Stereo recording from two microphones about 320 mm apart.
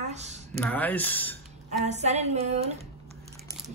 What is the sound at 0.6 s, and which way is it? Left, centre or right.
Speech, centre.